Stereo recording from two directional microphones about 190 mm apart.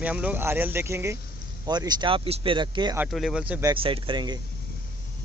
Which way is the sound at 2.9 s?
Centre (ahead or behind).